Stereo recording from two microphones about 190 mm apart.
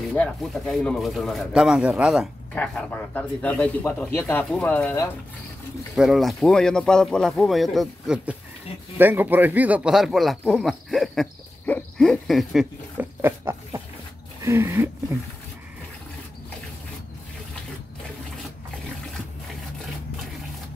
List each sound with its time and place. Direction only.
0.1 s speech: 5° left (ahead or behind)
2.5 s a man's voice: 5° left (ahead or behind)
5.9 s speech: centre (ahead or behind)
14.4 s a sound: 15° right (ahead or behind)